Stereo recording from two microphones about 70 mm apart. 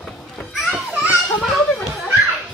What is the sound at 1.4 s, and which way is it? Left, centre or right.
Children playing, centre.